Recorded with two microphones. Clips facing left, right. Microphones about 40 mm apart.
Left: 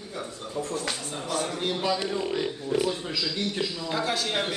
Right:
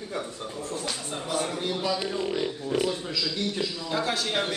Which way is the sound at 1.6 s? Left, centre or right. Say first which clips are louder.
Left 1 dB; left.